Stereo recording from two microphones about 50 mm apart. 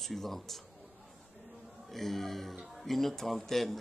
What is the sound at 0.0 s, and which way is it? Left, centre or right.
Speech, centre.